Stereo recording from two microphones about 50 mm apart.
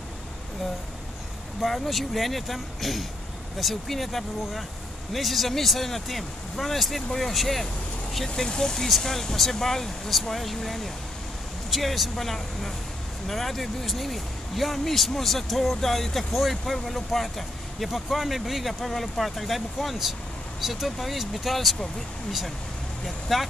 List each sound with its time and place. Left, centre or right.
1.6 s speech: centre
23.0 s speech: centre